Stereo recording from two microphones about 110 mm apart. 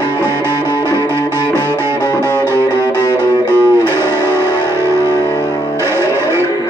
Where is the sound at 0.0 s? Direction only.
35° left (ahead or behind).